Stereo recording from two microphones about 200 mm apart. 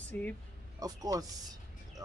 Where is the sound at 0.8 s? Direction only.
20° right (ahead or behind).